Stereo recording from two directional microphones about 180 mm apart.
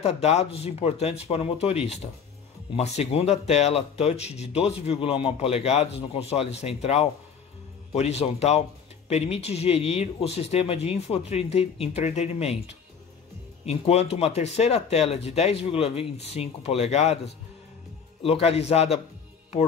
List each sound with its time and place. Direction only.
0.0 s speech: 35° left (ahead or behind)
18.2 s speech: 35° left (ahead or behind)